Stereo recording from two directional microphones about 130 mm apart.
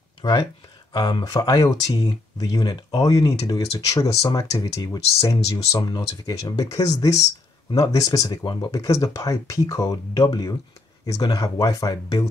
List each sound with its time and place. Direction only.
0.2 s speech: 35° left (ahead or behind)